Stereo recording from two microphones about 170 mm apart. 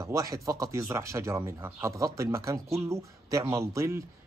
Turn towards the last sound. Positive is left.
turn(degrees=-15)  # may be behind; listen again after turning